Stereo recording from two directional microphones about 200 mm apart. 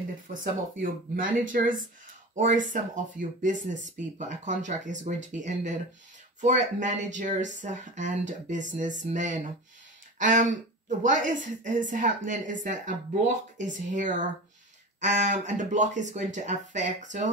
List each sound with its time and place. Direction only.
0.3 s speech: 45° right (ahead or behind)